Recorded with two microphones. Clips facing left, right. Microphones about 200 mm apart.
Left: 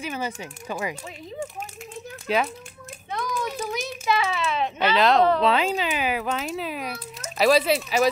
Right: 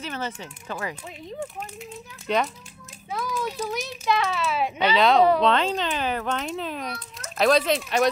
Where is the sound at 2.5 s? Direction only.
55° left (ahead or behind).